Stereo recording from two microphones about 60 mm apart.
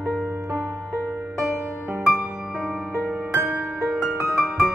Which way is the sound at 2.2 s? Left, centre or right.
Right.